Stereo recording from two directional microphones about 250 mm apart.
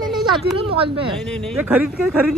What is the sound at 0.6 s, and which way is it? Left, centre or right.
Speech, right.